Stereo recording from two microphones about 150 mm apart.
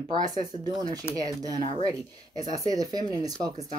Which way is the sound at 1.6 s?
35° left (ahead or behind).